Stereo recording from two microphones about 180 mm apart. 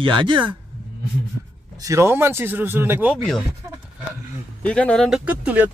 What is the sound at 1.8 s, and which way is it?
Speech, 15° right (ahead or behind).